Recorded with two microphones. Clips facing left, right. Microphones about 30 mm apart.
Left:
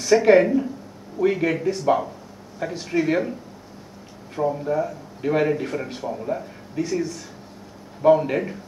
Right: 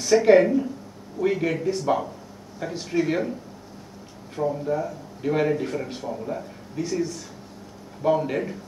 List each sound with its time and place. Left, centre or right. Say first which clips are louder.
0.0 s a woman's voice: left 1 dB; centre
4.4 s a man's voice: left 2 dB; centre
6.8 s a woman's voice: left 2 dB; centre